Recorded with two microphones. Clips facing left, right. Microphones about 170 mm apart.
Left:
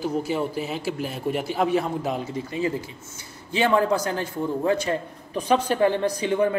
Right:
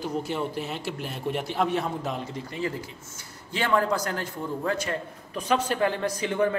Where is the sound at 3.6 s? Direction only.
25° left (ahead or behind).